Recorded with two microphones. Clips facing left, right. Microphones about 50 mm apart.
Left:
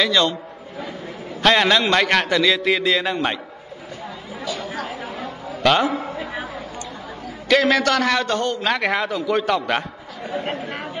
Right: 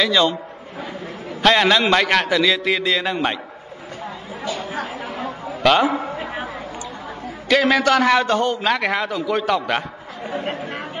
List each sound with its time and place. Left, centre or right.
0.0 s a man's voice: centre
1.4 s a man's voice: centre
4.5 s chatter: right
5.6 s a man's voice: centre
5.9 s a man's voice: right
6.1 s a sound: right
7.4 s a man's voice: centre